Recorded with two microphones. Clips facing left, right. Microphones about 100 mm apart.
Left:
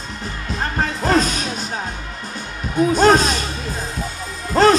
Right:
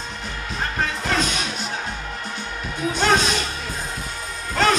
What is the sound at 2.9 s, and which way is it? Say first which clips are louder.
Speech: left 5 dB; 40° left (ahead or behind).